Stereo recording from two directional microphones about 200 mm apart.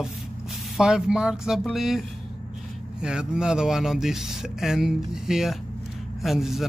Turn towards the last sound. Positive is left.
turn(degrees=0)  # may be behind; listen again after turning